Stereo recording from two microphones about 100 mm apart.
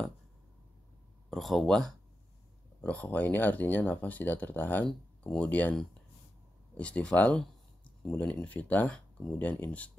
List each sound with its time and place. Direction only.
1.3 s speech: centre (ahead or behind)
2.8 s speech: 15° left (ahead or behind)
6.8 s speech: 10° left (ahead or behind)